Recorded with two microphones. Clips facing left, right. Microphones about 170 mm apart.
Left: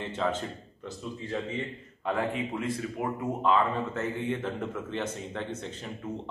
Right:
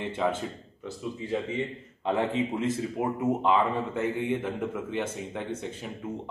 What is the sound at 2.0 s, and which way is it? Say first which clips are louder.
A man's voice: right 3 dB; 25° right (ahead or behind).